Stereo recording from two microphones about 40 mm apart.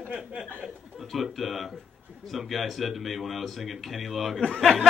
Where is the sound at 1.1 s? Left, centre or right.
Centre.